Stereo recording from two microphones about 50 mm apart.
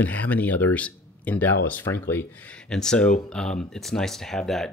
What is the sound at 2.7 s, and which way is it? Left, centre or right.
Speech, centre.